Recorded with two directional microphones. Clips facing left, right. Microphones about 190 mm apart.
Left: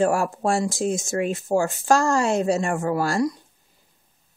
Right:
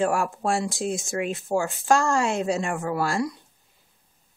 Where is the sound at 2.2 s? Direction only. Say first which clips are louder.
Left 3 dB; 40° left (ahead or behind).